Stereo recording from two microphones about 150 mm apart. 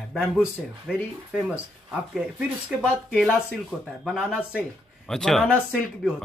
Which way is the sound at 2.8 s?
5° left (ahead or behind).